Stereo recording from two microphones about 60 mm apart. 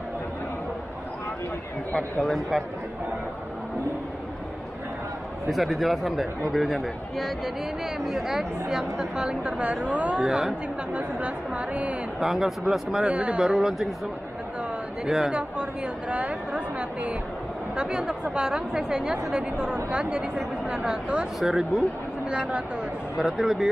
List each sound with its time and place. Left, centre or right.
1.9 s speech: left
2.2 s speech: centre
5.5 s a woman's voice: centre; by 10.2 s right
10.2 s speech: centre
10.9 s a woman's voice: right
12.2 s speech: centre
15.0 s speech: centre
15.3 s a woman's voice: centre
22.3 s speech: centre